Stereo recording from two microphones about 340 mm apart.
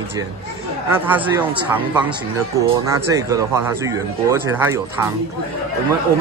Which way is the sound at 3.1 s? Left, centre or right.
Centre.